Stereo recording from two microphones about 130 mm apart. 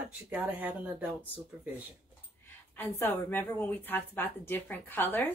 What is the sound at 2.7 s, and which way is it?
A woman's voice, 15° left (ahead or behind).